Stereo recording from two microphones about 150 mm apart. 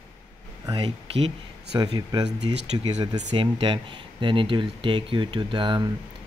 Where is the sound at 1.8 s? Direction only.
25° right (ahead or behind).